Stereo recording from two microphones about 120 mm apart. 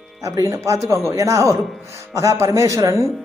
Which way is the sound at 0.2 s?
25° right (ahead or behind).